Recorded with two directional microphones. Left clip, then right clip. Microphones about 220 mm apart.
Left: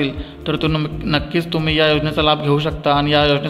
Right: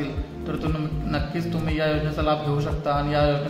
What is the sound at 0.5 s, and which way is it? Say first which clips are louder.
A man's voice: left 10 dB; 45° left (ahead or behind).